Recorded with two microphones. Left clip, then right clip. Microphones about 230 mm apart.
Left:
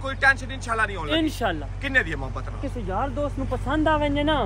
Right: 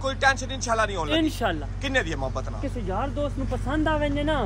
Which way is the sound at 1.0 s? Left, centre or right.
Centre.